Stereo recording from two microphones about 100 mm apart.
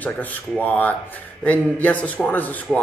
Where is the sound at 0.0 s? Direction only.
15° left (ahead or behind).